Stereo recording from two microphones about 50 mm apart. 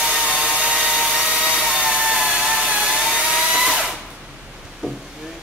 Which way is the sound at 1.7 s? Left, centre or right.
Centre.